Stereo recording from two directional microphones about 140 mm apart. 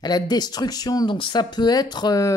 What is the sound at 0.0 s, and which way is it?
Speech, 30° left (ahead or behind).